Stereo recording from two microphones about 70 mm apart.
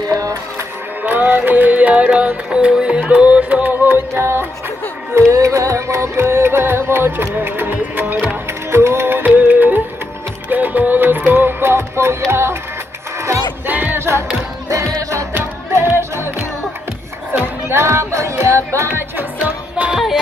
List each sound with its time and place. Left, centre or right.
0.1 s music: right
1.0 s music: right
4.1 s music: right
5.3 s music: right
13.7 s music: right
13.9 s music: right
14.7 s music: right
15.7 s music: right